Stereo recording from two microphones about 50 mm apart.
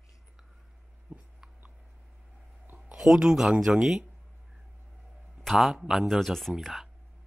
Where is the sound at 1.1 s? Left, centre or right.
Right.